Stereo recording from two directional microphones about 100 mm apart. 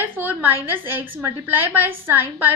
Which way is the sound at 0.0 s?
20° right (ahead or behind).